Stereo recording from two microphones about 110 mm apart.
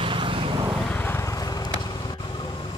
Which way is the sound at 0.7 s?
5° left (ahead or behind).